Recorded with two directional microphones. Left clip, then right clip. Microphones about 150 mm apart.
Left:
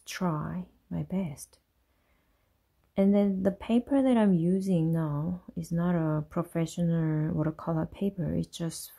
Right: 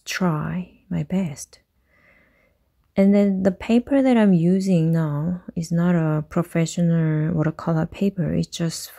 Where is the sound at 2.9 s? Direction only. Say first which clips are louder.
Right 8 dB; 25° right (ahead or behind).